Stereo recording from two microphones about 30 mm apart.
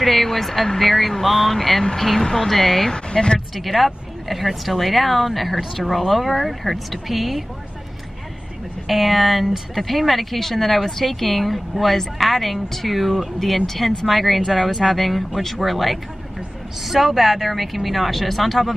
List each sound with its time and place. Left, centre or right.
0.0 s a woman's voice: centre
2.9 s speech: left
3.3 s a woman's voice: centre
8.8 s a woman's voice: centre